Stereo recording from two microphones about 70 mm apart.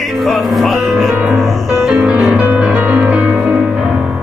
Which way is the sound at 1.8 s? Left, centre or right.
Centre.